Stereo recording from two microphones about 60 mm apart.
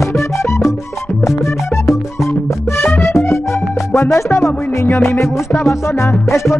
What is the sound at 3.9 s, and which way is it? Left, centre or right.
Music, left.